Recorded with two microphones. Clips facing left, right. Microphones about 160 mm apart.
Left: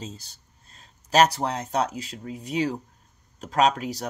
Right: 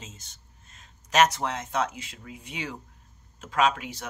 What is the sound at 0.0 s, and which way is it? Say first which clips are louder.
Speech: left 9 dB; 35° left (ahead or behind).